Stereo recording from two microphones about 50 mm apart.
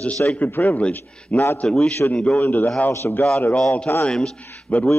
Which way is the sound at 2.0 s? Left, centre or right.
Left.